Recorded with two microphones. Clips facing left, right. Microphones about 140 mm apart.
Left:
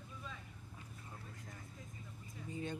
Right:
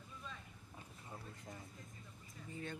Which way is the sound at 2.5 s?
20° left (ahead or behind).